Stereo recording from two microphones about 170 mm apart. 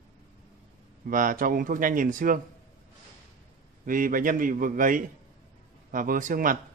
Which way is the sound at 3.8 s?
55° right (ahead or behind).